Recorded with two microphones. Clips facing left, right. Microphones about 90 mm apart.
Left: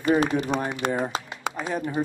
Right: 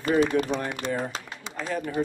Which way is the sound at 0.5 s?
55° left (ahead or behind).